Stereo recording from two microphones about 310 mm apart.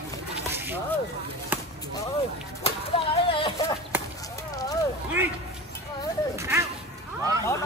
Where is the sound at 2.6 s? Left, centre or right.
Centre.